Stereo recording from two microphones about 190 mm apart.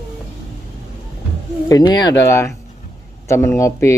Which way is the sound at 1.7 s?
20° left (ahead or behind).